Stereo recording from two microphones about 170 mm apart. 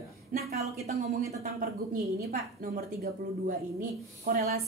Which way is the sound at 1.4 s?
65° right (ahead or behind).